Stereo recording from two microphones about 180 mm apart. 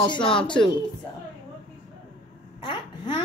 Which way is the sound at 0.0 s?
25° left (ahead or behind).